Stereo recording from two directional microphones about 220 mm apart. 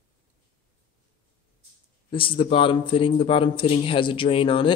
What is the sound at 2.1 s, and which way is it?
Speech, 25° left (ahead or behind).